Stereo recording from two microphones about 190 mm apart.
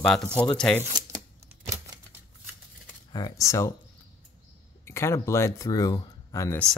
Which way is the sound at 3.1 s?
20° left (ahead or behind).